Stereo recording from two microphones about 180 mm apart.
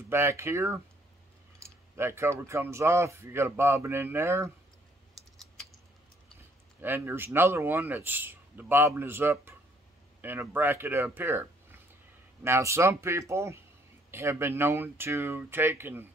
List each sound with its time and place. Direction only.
0.1 s speech: 15° right (ahead or behind)
2.0 s speech: 15° right (ahead or behind)
6.8 s speech: 10° right (ahead or behind)
12.4 s speech: 15° right (ahead or behind)